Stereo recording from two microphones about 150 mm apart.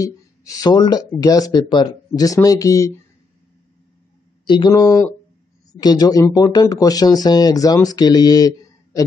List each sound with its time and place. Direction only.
0.0 s speech: 20° left (ahead or behind)
4.5 s speech: 30° left (ahead or behind)